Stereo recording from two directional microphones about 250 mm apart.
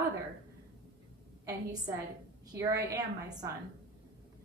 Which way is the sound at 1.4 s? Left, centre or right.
Centre.